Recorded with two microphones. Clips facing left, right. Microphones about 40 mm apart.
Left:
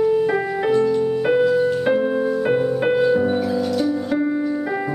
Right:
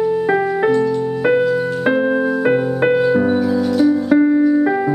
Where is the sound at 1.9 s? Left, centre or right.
Centre.